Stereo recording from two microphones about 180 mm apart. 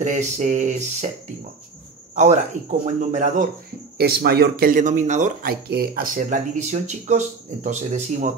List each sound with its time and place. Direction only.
0.0 s a sound: 40° right (ahead or behind)
2.1 s speech: 45° right (ahead or behind)
4.0 s speech: 60° right (ahead or behind); by 8.3 s 45° right (ahead or behind)